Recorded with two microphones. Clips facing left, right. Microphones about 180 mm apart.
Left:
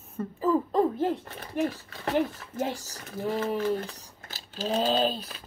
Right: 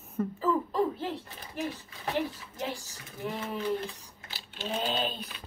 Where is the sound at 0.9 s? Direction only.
50° left (ahead or behind).